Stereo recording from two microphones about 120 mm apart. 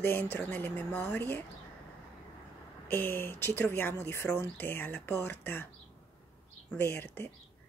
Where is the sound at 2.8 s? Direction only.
15° left (ahead or behind).